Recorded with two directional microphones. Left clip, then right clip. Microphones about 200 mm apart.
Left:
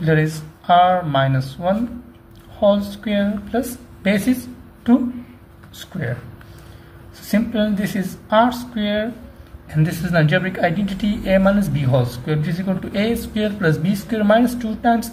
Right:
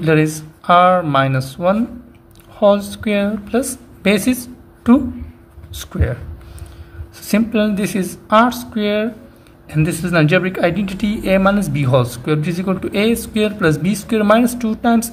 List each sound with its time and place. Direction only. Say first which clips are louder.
0.0 s speech: right 4 dB; 35° right (ahead or behind)
7.2 s speech: right 3 dB; 40° right (ahead or behind)